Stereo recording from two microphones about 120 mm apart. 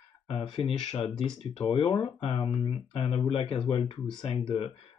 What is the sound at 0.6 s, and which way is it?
Speech, 55° left (ahead or behind).